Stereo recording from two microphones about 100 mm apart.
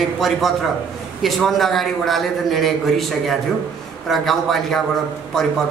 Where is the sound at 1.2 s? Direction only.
Centre (ahead or behind).